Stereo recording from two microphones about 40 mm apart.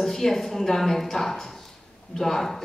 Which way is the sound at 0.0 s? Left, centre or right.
Centre.